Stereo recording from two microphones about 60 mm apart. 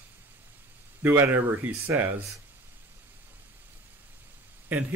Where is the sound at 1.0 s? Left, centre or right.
Right.